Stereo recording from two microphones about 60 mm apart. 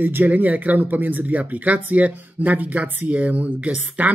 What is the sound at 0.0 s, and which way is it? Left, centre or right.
Speech, right.